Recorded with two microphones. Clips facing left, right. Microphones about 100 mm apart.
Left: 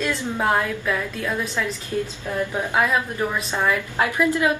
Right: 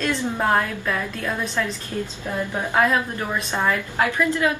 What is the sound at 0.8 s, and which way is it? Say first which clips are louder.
Speech: left 1 dB; 15° right (ahead or behind).